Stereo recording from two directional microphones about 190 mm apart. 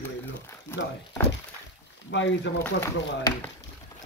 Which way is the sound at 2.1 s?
70° left (ahead or behind).